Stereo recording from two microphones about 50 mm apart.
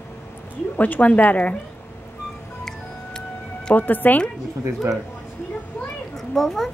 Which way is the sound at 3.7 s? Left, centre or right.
Left.